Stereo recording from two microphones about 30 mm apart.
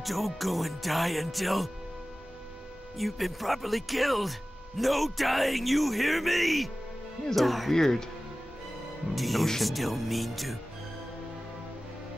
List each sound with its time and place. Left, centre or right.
0.0 s speech: centre
3.0 s speech: centre
7.7 s speech: centre
9.1 s speech: centre